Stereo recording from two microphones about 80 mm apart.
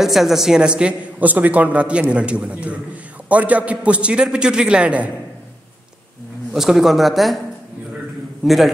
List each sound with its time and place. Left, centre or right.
0.0 s a man's voice: centre
6.5 s speech: centre